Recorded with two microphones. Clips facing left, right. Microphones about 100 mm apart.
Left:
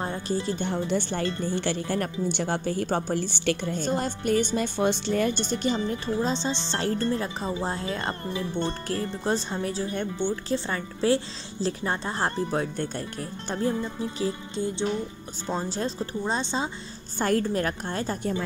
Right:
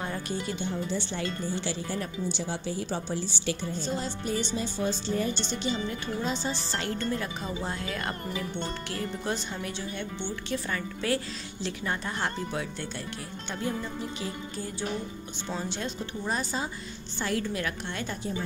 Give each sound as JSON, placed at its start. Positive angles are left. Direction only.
{"t": 0.0, "sound": "speech", "side_deg": 30}
{"t": 0.6, "sound": "speech", "side_deg": 55}
{"t": 5.3, "sound": "speech", "side_deg": 50}
{"t": 6.0, "sound": "speech", "side_deg": 30}
{"t": 6.8, "sound": "a woman's voice", "side_deg": 35}
{"t": 10.5, "sound": "a woman's voice", "side_deg": 30}
{"t": 15.4, "sound": "speech", "side_deg": 35}
{"t": 17.2, "sound": "a woman's voice", "side_deg": 45}